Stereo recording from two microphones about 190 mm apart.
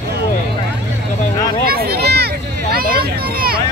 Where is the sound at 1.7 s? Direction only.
55° right (ahead or behind).